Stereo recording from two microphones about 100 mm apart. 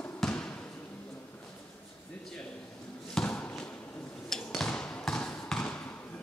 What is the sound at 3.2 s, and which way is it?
Basketball bounce, 15° left (ahead or behind).